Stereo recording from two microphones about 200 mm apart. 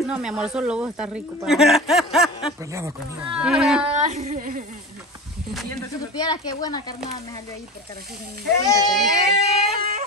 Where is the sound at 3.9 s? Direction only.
35° right (ahead or behind).